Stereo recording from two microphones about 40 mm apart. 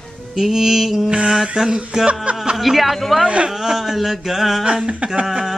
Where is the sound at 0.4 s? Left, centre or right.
Centre.